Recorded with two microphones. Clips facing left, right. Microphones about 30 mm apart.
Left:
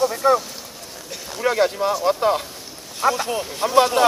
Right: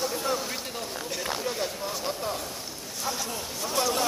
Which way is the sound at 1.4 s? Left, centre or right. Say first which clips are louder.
Left 12 dB; left.